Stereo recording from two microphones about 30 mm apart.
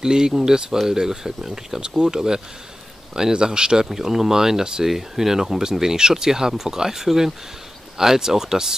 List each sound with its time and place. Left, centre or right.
0.0 s speech: right
1.8 s speech: right
2.1 s speech: centre
3.8 s speech: centre
4.8 s speech: centre